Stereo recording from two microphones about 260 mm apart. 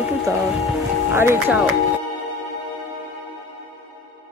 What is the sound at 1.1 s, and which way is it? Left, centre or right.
Speech, centre.